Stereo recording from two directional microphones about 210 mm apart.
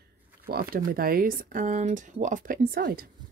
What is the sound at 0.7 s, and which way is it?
Speech, 45° right (ahead or behind).